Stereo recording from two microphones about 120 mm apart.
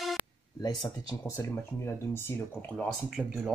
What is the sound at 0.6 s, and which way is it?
Speech, 35° left (ahead or behind).